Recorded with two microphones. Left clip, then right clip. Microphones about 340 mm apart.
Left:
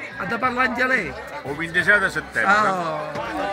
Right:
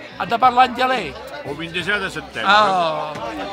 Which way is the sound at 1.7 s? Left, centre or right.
Centre.